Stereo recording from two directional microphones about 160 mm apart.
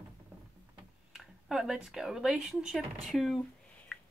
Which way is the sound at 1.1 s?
5° right (ahead or behind).